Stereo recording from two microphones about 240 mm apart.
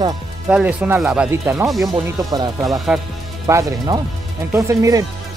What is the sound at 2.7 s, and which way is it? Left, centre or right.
Speech, centre.